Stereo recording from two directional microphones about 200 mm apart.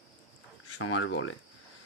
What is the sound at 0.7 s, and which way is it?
Speech, 75° left (ahead or behind).